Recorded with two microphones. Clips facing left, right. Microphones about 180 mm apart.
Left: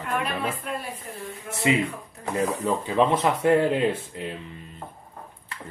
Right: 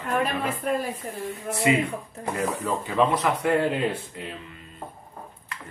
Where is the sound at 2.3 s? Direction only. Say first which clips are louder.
Left 3 dB; 30° left (ahead or behind).